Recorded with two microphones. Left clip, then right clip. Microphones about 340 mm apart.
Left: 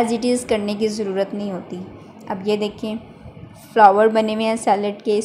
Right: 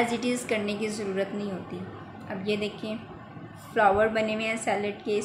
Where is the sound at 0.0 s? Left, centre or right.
Centre.